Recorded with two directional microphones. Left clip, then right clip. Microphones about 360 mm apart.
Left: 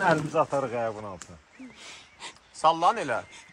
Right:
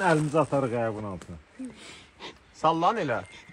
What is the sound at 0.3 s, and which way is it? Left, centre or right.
Speech, right.